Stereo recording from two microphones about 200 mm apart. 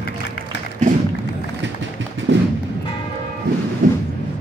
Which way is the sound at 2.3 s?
65° right (ahead or behind).